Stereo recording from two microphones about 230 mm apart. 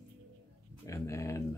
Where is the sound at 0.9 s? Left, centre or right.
Centre.